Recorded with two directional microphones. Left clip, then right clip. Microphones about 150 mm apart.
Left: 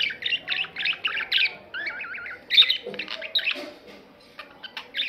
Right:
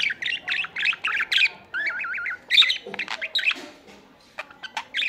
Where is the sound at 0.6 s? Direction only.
40° right (ahead or behind).